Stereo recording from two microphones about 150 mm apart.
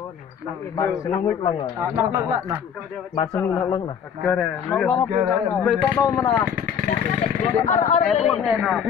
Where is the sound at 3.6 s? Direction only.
30° left (ahead or behind).